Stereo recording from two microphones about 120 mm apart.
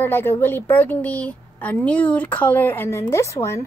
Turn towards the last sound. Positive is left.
turn(degrees=25)  # may be behind; listen again after turning